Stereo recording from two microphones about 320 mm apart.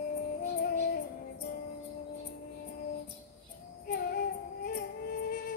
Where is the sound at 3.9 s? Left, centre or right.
Left.